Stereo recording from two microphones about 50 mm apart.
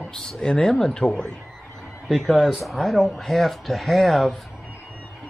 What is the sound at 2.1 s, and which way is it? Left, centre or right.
Speech, centre.